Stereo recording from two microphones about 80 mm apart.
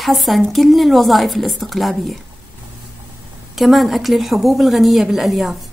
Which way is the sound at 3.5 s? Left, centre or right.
Centre.